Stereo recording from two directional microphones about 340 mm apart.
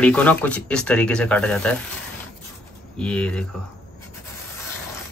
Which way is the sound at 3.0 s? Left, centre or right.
Centre.